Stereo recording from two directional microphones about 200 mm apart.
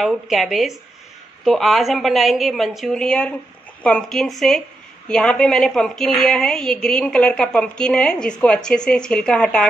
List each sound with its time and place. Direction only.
0.0 s a woman's voice: centre (ahead or behind)